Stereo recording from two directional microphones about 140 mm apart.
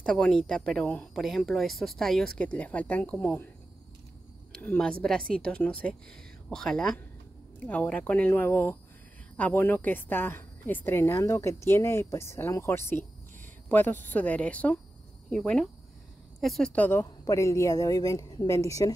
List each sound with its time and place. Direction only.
0.0 s speech: 5° left (ahead or behind)
4.6 s a woman's voice: 10° left (ahead or behind)